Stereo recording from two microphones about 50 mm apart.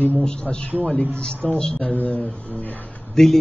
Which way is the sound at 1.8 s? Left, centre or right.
Left.